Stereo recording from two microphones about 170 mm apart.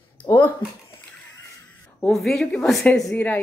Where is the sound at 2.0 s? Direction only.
Centre (ahead or behind).